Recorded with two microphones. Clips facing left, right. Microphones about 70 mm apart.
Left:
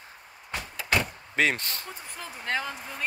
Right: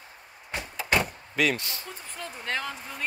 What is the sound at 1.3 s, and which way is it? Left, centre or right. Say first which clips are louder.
Speech: left 1 dB; left.